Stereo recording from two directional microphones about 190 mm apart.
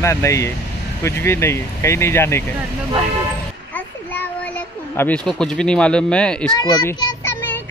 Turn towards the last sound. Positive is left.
turn(degrees=20)  # may be behind; listen again after turning